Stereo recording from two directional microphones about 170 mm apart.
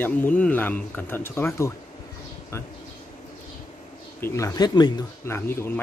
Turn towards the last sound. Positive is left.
turn(degrees=15)  # may be behind; listen again after turning